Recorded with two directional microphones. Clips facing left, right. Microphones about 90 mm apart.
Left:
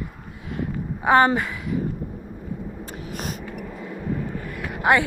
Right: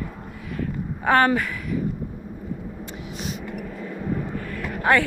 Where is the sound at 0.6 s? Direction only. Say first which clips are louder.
Left 1 dB; 20° left (ahead or behind).